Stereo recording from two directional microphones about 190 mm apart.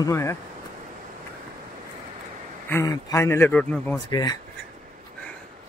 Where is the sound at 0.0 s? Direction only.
15° left (ahead or behind).